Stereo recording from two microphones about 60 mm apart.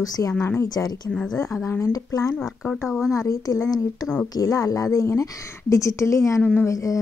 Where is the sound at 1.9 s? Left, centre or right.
Left.